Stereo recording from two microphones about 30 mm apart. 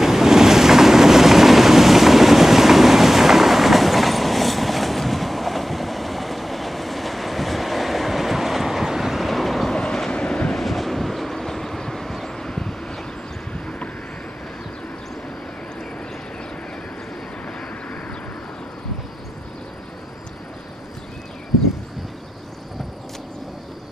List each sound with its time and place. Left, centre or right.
0.0 s boat: centre
9.2 s vehicle: centre
9.7 s train: left
10.1 s train: left
10.5 s vehicle: centre
13.5 s vehicle: left